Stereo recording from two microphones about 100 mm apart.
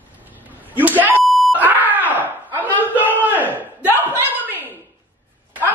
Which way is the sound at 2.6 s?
15° left (ahead or behind).